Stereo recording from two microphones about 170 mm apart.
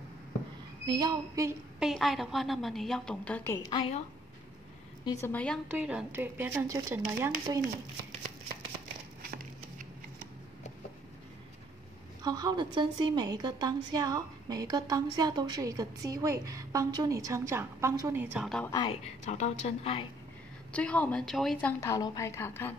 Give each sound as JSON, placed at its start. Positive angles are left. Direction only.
{"t": 0.8, "sound": "a woman's voice", "side_deg": -25}
{"t": 1.8, "sound": "a woman's voice", "side_deg": 0}
{"t": 3.7, "sound": "a woman's voice", "side_deg": 35}
{"t": 5.2, "sound": "a woman's voice", "side_deg": 10}
{"t": 5.7, "sound": "speech", "side_deg": -5}
{"t": 9.2, "sound": "a sound", "side_deg": -60}
{"t": 12.2, "sound": "a woman's voice", "side_deg": -25}
{"t": 18.7, "sound": "speech", "side_deg": 25}
{"t": 19.2, "sound": "a woman's voice", "side_deg": 40}
{"t": 20.7, "sound": "a woman's voice", "side_deg": 10}
{"t": 21.8, "sound": "a woman's voice", "side_deg": 20}